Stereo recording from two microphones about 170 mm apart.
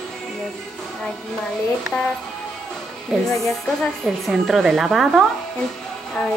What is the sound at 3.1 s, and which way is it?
A woman's voice, centre (ahead or behind).